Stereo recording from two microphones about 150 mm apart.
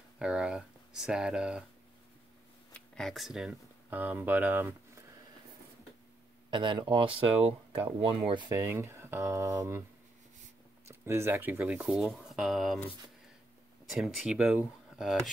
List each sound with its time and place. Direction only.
0.2 s speech: 5° right (ahead or behind)
2.7 s speech: 5° left (ahead or behind); by 5.0 s 15° right (ahead or behind)
6.5 s speech: 30° right (ahead or behind)
8.5 s speech: 15° right (ahead or behind)
10.9 s speech: 15° right (ahead or behind); by 12.8 s centre (ahead or behind)
13.8 s speech: centre (ahead or behind)